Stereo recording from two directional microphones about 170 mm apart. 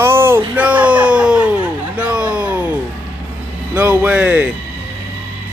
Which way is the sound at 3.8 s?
10° right (ahead or behind).